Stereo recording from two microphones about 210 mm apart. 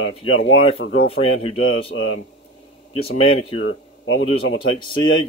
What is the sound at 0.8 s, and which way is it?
Speech, 60° left (ahead or behind).